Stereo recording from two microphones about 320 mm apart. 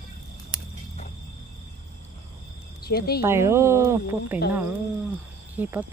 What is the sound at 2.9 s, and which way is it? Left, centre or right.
Speech, left.